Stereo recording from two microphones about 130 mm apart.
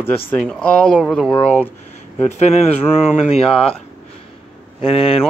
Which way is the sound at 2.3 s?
60° left (ahead or behind).